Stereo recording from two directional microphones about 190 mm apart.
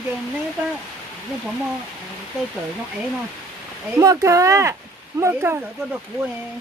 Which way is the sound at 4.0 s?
15° right (ahead or behind).